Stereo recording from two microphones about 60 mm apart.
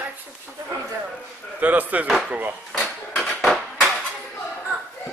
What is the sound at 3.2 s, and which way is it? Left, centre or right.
Dishes, centre.